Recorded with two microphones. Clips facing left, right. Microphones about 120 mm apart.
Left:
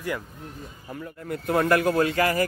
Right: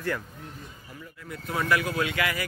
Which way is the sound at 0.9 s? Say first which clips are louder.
Left 9 dB; 55° left (ahead or behind).